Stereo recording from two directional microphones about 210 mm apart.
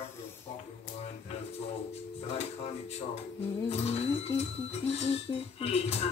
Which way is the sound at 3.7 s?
30° left (ahead or behind).